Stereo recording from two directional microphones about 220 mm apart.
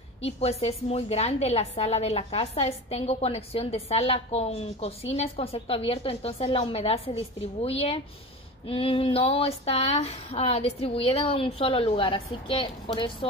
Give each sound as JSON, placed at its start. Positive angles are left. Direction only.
{"t": 0.2, "sound": "a woman's voice", "side_deg": 30}